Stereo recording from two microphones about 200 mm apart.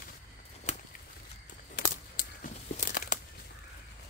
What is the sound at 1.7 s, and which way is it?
Crumpling, 40° left (ahead or behind).